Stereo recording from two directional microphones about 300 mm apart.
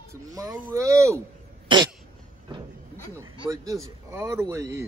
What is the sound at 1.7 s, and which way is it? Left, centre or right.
Cough, centre.